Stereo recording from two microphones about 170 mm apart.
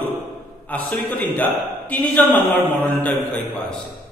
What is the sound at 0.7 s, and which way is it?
A man's voice, 10° left (ahead or behind).